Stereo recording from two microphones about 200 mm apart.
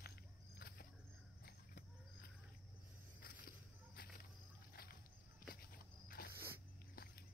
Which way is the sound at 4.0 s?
50° left (ahead or behind).